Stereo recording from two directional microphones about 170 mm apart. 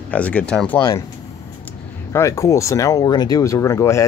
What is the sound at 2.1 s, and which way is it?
Speech, 15° left (ahead or behind).